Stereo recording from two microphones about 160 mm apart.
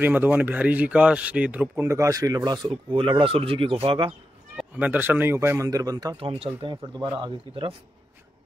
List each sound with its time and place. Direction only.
0.0 s speech: 10° right (ahead or behind); by 4.1 s 35° right (ahead or behind)
4.6 s speech: 10° right (ahead or behind); by 7.7 s 30° right (ahead or behind)